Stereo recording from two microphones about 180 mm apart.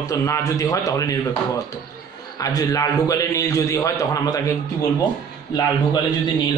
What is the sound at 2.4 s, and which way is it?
A man's voice, 20° left (ahead or behind).